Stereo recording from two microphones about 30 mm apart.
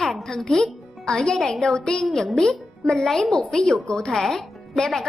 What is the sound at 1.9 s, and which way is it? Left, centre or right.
Music, left.